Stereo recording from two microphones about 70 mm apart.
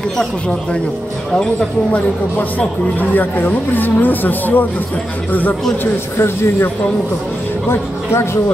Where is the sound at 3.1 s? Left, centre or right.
Left.